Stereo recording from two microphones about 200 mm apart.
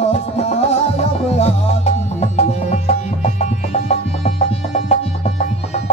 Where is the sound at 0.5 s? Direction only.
35° left (ahead or behind).